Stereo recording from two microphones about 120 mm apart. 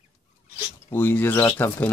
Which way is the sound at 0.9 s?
15° left (ahead or behind).